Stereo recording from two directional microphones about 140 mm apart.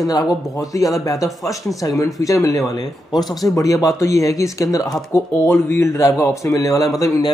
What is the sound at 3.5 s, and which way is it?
Speech, 25° left (ahead or behind).